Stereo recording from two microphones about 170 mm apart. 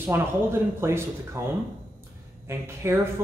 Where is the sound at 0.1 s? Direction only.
15° right (ahead or behind).